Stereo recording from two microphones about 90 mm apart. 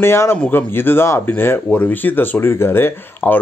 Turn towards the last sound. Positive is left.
turn(degrees=25)  # may be behind; listen again after turning